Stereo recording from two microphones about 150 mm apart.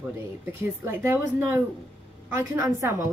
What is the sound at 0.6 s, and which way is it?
A woman's voice, 15° right (ahead or behind).